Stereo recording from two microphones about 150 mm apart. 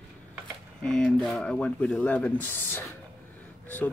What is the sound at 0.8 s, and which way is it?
Speech, 5° left (ahead or behind).